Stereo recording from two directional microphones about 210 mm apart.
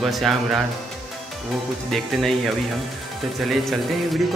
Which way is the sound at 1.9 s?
Centre (ahead or behind).